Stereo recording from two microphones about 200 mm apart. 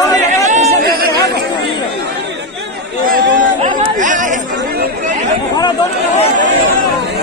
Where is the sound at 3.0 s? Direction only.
45° right (ahead or behind).